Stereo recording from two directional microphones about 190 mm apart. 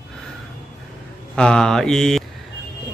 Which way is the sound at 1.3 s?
5° left (ahead or behind).